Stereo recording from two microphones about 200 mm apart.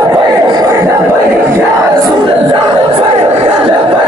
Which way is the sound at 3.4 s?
25° right (ahead or behind).